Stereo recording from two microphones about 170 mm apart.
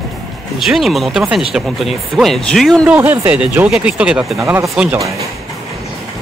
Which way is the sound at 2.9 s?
10° right (ahead or behind).